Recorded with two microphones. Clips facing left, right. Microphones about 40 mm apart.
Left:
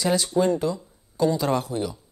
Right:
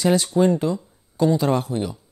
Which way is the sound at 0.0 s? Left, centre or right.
Right.